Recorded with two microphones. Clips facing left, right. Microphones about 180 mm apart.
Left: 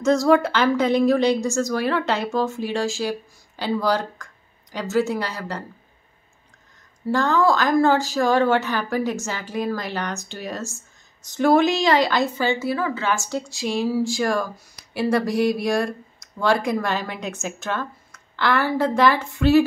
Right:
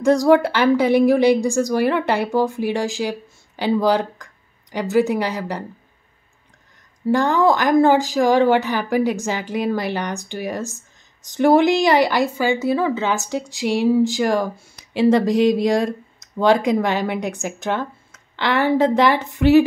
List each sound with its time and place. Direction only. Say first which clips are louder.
0.0 s a woman's voice: right 3 dB; 15° right (ahead or behind)
7.1 s a woman's voice: right 3 dB; 15° right (ahead or behind)